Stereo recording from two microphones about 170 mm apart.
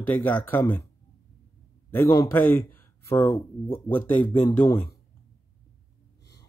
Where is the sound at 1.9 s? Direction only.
20° left (ahead or behind).